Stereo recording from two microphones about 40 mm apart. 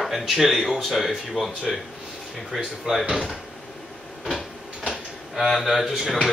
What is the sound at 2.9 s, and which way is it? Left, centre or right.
Speech, centre.